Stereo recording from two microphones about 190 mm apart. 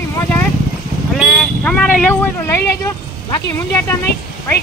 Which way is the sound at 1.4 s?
5° left (ahead or behind).